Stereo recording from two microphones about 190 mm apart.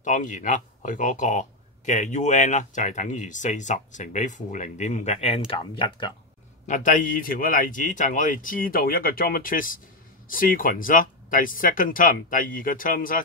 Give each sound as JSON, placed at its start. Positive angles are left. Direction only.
{"t": 0.0, "sound": "speech", "side_deg": 40}
{"t": 6.7, "sound": "speech", "side_deg": 40}